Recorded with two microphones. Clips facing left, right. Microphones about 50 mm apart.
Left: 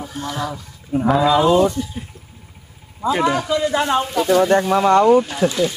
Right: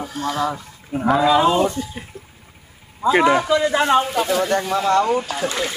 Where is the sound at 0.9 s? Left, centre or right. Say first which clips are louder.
Left 1 dB; centre.